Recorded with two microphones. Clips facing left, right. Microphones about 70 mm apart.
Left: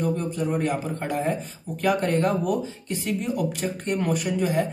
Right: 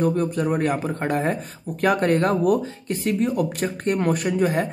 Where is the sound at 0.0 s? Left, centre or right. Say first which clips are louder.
Right 4 dB; right.